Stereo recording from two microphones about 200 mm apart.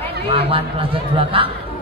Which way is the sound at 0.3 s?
25° right (ahead or behind).